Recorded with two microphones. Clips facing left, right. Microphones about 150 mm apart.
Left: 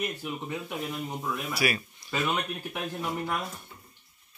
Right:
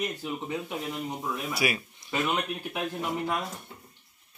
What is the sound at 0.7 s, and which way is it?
Speech, 15° right (ahead or behind).